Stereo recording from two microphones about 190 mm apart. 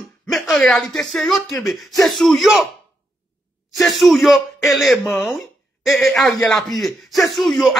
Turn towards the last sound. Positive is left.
turn(degrees=0)  # may be behind; listen again after turning